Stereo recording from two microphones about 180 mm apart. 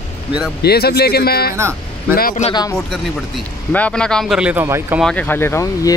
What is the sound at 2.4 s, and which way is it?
Speech, 25° left (ahead or behind).